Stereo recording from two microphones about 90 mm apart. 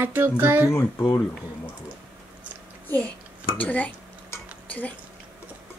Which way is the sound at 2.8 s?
15° left (ahead or behind).